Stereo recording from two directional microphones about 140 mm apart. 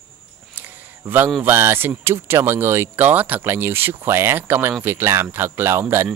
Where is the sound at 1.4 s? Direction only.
15° right (ahead or behind).